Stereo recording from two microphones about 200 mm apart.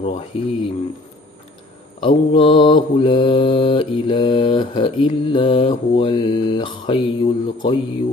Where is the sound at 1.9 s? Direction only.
25° left (ahead or behind).